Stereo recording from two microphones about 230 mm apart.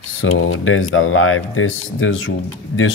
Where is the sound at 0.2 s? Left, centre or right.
Left.